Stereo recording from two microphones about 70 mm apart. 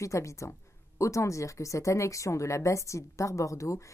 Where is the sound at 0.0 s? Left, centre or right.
Left.